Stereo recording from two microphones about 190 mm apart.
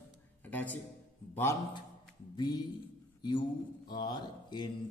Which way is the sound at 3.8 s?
20° left (ahead or behind).